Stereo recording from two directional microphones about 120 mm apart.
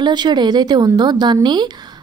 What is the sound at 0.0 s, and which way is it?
A woman's voice, 35° right (ahead or behind).